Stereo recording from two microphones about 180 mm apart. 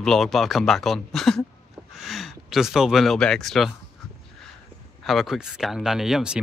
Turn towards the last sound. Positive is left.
turn(degrees=-5)  # may be behind; listen again after turning